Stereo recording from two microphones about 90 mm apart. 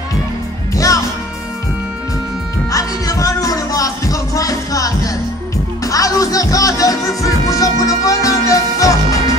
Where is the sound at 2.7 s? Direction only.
40° left (ahead or behind).